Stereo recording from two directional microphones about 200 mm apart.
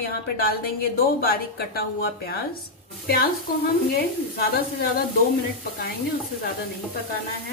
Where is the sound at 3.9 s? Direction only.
50° left (ahead or behind).